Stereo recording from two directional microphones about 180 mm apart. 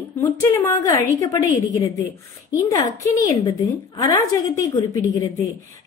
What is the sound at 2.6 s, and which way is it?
A woman's voice, 20° left (ahead or behind).